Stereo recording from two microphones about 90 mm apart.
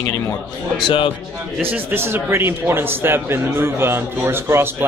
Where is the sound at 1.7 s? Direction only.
25° right (ahead or behind).